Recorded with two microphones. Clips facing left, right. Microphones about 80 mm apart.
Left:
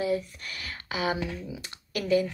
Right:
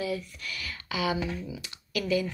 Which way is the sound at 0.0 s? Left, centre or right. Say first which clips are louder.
Left 4 dB; left.